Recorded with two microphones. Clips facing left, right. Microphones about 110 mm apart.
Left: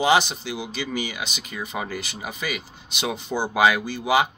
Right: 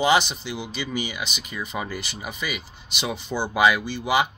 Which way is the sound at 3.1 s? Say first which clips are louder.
Left 1 dB; 45° left (ahead or behind).